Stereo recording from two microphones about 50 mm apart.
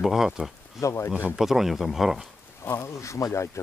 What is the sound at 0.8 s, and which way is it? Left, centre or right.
Speech, left.